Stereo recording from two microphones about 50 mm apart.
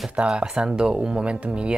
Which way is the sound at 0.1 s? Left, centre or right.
Centre.